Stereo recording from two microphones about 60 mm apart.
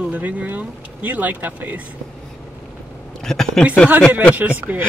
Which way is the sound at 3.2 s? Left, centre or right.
Centre.